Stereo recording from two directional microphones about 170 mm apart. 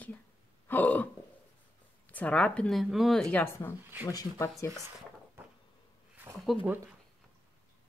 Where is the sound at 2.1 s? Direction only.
10° left (ahead or behind).